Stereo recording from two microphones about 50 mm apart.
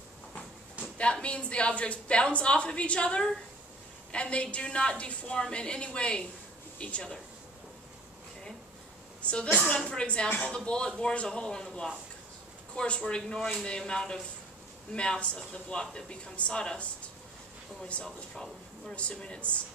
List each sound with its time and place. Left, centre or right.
0.9 s a woman's voice: left
9.2 s a woman's voice: left
18.0 s speech: centre
18.9 s a woman's voice: left